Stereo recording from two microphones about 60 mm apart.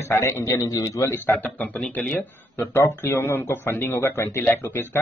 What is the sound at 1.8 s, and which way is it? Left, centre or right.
A man's voice, left.